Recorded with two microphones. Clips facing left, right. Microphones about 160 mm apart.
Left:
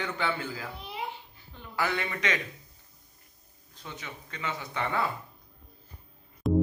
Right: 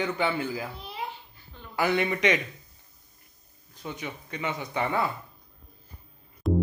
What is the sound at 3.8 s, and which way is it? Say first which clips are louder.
Speech: right 6 dB; 15° right (ahead or behind).